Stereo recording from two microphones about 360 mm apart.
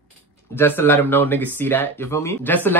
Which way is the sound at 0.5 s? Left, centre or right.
Centre.